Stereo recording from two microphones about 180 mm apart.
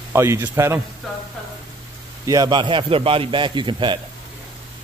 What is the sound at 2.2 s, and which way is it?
A man's voice, 20° right (ahead or behind).